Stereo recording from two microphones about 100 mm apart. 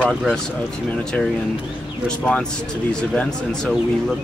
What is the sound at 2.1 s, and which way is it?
Speech, 10° left (ahead or behind).